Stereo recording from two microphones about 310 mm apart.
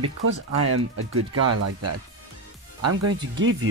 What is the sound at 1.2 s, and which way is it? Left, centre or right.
Speech, right.